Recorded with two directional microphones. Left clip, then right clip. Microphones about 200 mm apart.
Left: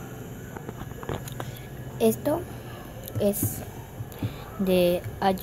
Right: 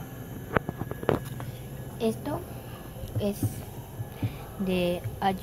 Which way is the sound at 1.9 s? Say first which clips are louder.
Left 7 dB; 20° left (ahead or behind).